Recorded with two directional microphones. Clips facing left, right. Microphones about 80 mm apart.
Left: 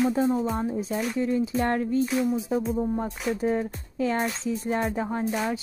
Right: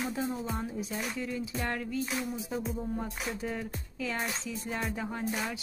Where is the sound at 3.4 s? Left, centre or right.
Left.